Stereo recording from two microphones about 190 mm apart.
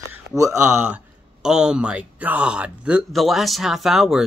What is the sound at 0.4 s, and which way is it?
Speech, 15° right (ahead or behind).